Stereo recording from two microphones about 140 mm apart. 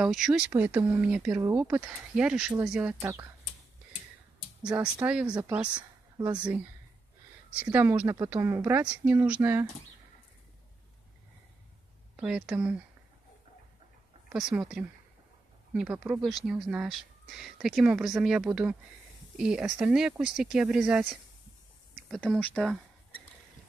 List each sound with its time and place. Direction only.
0.0 s speech: 5° right (ahead or behind)
3.0 s speech: 20° right (ahead or behind)
4.7 s speech: 15° right (ahead or behind)
12.2 s speech: 5° right (ahead or behind)
14.3 s speech: 5° right (ahead or behind)
22.1 s speech: 5° left (ahead or behind)